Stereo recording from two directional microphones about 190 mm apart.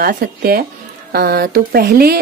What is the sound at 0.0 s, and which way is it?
A woman's voice, 55° right (ahead or behind).